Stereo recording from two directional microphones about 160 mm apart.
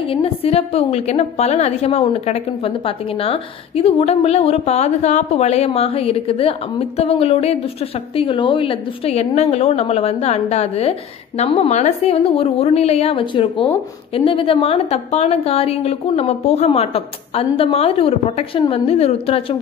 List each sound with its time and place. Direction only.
0.1 s a woman's voice: 35° left (ahead or behind)